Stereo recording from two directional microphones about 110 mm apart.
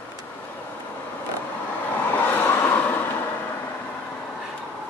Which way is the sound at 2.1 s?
15° left (ahead or behind).